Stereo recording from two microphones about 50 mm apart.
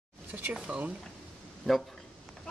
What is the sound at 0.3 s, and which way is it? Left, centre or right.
Speech, right.